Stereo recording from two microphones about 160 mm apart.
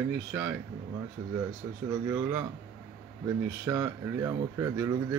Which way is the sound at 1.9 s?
20° right (ahead or behind).